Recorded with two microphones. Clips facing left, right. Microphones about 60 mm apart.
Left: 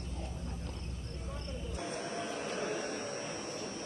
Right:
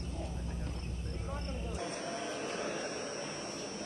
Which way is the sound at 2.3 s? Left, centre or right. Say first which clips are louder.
Even; right.